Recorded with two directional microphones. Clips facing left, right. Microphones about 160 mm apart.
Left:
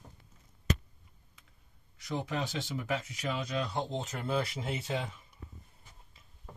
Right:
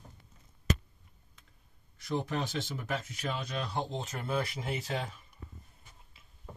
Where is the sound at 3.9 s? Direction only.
25° left (ahead or behind).